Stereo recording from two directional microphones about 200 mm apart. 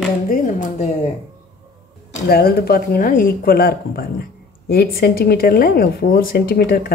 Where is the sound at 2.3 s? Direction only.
50° left (ahead or behind).